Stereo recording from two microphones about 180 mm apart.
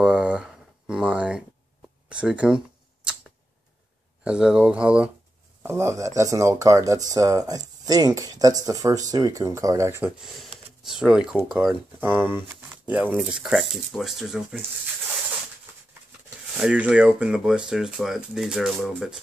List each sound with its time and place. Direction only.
0.0 s a sound: 5° right (ahead or behind)
2.0 s speech: 5° right (ahead or behind)
4.2 s speech: 5° right (ahead or behind)
10.8 s speech: centre (ahead or behind)
16.5 s speech: 5° right (ahead or behind)